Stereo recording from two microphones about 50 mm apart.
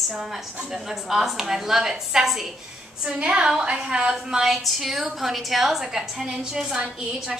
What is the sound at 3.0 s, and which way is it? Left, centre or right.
A woman's voice, centre.